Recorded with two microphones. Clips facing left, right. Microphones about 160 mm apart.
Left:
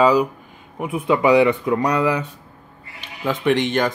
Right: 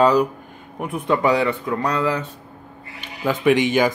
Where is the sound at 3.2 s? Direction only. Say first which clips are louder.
Right 2 dB; 5° right (ahead or behind).